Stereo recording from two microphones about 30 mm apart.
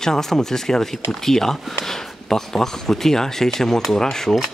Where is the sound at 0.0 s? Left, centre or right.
Centre.